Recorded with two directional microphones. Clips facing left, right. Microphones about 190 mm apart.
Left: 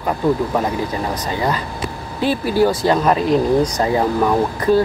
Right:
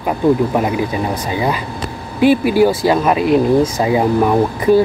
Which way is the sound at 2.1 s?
15° right (ahead or behind).